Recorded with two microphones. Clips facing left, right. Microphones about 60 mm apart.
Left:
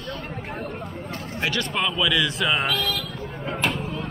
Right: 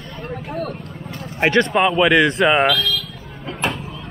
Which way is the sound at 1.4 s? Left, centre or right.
Right.